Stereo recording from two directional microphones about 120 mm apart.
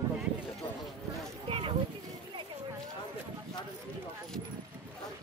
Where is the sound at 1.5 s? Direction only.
45° right (ahead or behind).